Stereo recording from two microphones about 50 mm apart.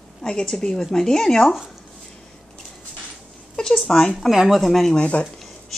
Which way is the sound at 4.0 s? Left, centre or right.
Centre.